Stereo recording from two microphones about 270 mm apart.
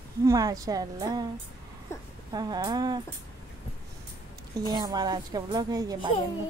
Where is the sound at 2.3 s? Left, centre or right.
Centre.